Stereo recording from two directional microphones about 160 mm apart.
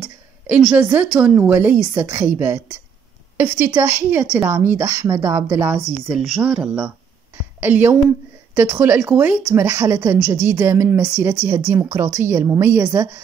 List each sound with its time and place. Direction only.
0.0 s a sound: centre (ahead or behind)
1.3 s a woman's voice: 15° right (ahead or behind)
6.0 s a woman's voice: 5° right (ahead or behind)